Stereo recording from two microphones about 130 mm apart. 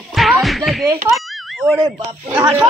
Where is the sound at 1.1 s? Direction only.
Centre (ahead or behind).